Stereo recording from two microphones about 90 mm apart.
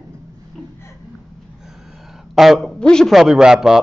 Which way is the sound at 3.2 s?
5° right (ahead or behind).